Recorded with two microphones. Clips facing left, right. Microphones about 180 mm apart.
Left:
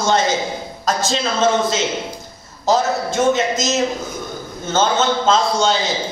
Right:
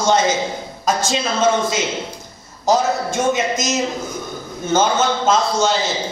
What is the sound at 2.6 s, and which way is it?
A man's voice, 15° right (ahead or behind).